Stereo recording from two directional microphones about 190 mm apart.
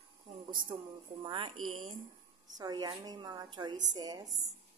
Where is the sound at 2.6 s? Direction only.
20° right (ahead or behind).